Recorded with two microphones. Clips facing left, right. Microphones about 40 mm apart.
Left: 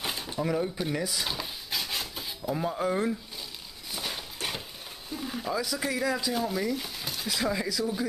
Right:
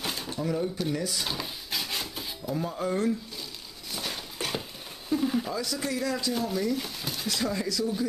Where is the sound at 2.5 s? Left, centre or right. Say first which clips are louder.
Left 1 dB; centre.